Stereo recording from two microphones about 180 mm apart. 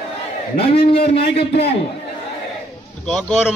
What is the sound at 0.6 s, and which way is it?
A man's voice, 30° left (ahead or behind).